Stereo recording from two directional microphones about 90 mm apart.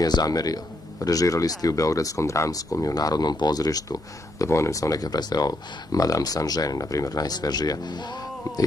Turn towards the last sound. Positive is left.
turn(degrees=45)  # may be behind; listen again after turning